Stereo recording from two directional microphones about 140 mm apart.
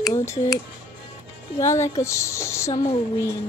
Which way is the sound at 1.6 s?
20° left (ahead or behind).